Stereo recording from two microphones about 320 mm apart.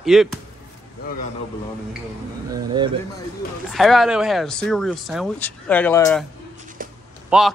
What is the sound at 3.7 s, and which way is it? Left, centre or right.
Speech, centre.